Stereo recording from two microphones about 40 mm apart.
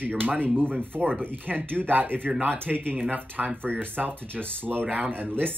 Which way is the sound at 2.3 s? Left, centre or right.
Right.